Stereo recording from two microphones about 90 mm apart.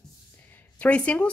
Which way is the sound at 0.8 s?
15° left (ahead or behind).